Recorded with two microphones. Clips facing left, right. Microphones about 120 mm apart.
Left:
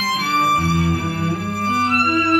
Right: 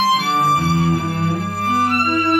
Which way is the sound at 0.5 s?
25° right (ahead or behind).